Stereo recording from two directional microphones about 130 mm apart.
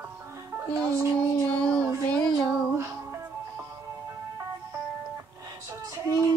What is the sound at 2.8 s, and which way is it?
Music, 20° right (ahead or behind).